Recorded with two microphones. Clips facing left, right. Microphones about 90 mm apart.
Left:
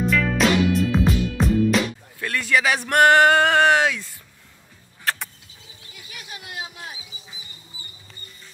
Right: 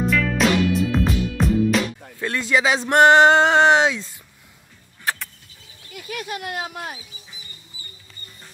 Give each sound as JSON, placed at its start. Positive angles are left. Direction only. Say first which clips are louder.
{"t": 0.0, "sound": "music", "louder": "even", "side_deg": 0}
{"t": 2.1, "sound": "speech", "louder": "right 1 dB", "side_deg": -20}
{"t": 5.1, "sound": "vehicle", "louder": "even", "side_deg": -15}
{"t": 5.9, "sound": "speech", "louder": "right 11 dB", "side_deg": -60}